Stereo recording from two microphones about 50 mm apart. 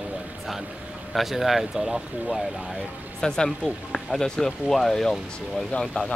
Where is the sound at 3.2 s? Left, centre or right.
Centre.